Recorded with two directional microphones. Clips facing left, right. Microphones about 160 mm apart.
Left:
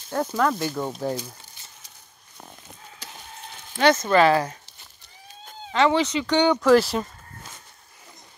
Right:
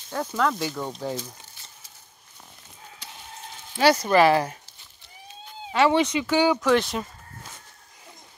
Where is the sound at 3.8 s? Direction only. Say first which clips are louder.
Even; 35° right (ahead or behind).